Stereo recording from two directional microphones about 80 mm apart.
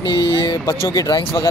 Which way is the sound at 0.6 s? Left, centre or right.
Left.